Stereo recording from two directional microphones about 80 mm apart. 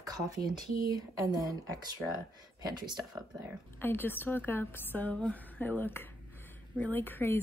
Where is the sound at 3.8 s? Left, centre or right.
Left.